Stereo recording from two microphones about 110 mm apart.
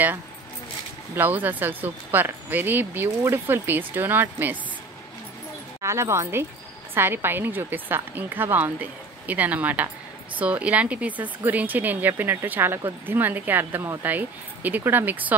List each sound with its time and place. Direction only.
1.1 s speech: 15° right (ahead or behind)
5.8 s speech: 25° right (ahead or behind)